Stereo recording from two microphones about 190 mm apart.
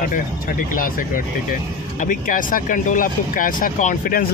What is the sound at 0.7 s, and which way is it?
Speech, 45° left (ahead or behind).